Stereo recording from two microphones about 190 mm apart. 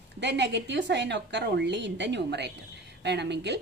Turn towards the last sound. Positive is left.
turn(degrees=-65)  # may be behind; listen again after turning